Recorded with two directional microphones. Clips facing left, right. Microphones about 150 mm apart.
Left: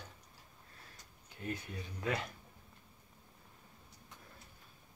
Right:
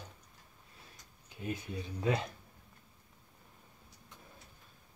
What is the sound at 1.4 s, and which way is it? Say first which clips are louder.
Speech: right 3 dB; 15° right (ahead or behind).